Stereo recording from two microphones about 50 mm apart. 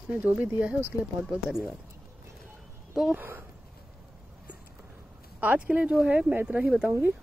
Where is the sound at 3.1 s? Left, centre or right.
Right.